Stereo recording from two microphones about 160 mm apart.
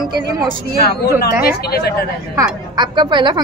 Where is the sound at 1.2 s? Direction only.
75° left (ahead or behind).